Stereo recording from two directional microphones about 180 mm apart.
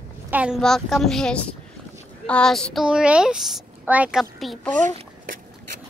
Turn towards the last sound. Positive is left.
turn(degrees=0)  # may be behind; listen again after turning